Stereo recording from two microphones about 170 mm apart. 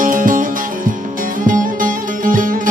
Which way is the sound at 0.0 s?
50° right (ahead or behind).